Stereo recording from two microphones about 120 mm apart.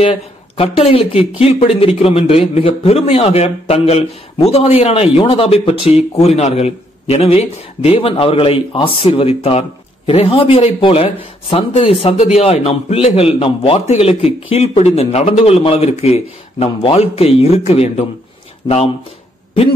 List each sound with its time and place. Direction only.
0.0 s a man's voice: 55° left (ahead or behind)
18.6 s speech: 40° left (ahead or behind)